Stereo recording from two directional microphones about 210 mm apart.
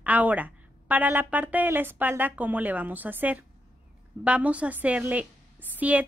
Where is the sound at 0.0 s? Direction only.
5° right (ahead or behind).